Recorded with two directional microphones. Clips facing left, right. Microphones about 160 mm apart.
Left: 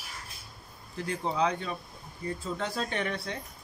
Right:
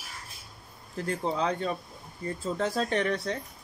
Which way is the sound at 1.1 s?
40° right (ahead or behind).